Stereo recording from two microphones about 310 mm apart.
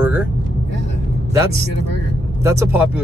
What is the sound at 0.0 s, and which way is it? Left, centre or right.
Vehicle, centre.